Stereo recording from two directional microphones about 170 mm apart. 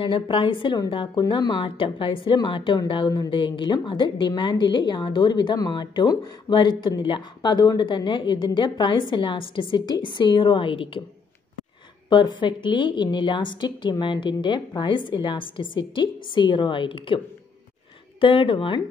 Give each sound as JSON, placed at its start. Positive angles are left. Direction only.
{"t": 0.0, "sound": "a woman's voice", "side_deg": 30}
{"t": 12.1, "sound": "a woman's voice", "side_deg": 25}
{"t": 18.2, "sound": "a woman's voice", "side_deg": 30}